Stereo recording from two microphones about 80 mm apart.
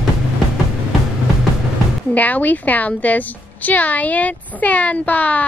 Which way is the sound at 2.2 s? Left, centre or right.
Centre.